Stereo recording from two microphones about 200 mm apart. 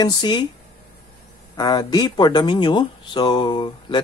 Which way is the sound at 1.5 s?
20° left (ahead or behind).